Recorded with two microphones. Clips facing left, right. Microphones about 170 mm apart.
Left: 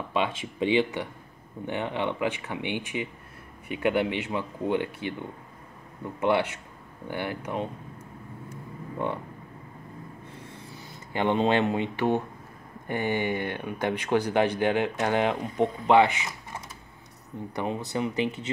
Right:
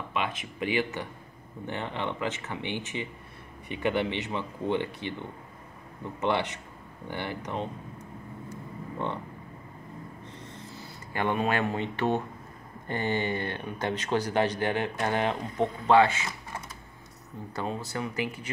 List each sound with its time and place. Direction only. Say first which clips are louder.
0.1 s speech: left 4 dB; 30° left (ahead or behind)
1.7 s speech: left 4 dB; 15° left (ahead or behind)
10.2 s a sound: even; 10° left (ahead or behind)
11.1 s speech: left 4 dB; 25° left (ahead or behind)
17.6 s speech: left 3 dB; 20° left (ahead or behind)